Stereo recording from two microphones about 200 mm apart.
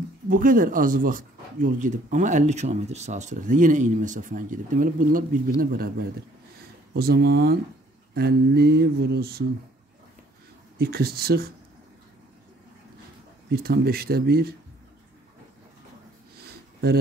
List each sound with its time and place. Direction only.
0.3 s speech: 45° right (ahead or behind)
10.8 s speech: 50° right (ahead or behind)
13.5 s speech: 50° right (ahead or behind)
16.3 s a sound: 50° right (ahead or behind)